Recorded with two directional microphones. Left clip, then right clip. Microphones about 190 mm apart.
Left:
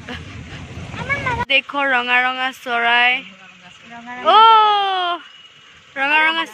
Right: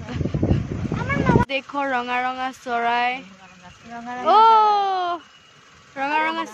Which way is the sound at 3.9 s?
35° right (ahead or behind).